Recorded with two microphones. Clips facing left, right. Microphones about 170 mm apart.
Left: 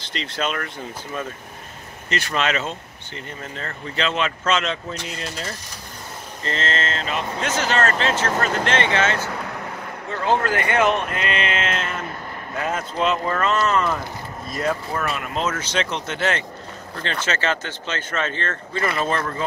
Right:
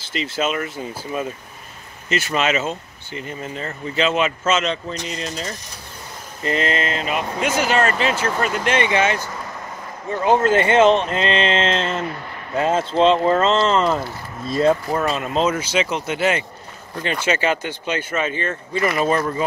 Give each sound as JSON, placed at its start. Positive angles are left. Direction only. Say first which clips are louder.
{"t": 0.0, "sound": "speech", "louder": "right 4 dB", "side_deg": -5}
{"t": 6.4, "sound": "speech", "louder": "right 4 dB", "side_deg": -15}